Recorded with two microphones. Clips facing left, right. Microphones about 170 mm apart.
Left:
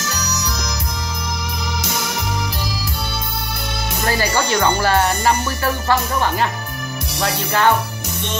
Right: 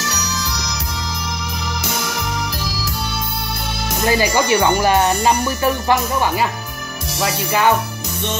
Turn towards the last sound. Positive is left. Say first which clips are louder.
# right 1 dB
turn(degrees=-10)  # may be behind; listen again after turning